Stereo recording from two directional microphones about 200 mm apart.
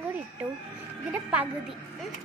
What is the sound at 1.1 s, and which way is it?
Speech, 10° right (ahead or behind).